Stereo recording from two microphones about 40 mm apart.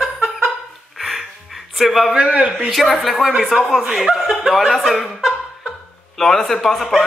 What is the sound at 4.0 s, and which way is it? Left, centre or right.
Chuckle, centre.